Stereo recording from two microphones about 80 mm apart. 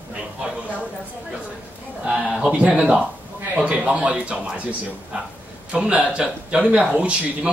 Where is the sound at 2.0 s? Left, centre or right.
Centre.